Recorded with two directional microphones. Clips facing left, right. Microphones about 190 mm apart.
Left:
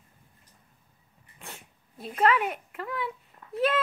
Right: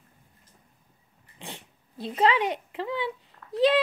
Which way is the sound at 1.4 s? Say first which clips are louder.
Right 4 dB; 30° right (ahead or behind).